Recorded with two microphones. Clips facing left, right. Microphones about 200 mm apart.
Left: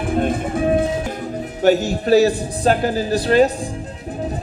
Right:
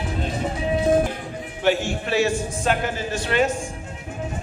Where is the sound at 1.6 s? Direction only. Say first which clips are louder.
Left 6 dB; 40° left (ahead or behind).